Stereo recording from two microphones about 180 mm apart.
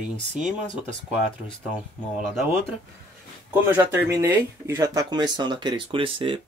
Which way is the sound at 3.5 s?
15° right (ahead or behind).